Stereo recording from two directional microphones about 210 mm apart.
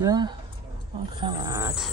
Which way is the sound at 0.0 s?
20° right (ahead or behind).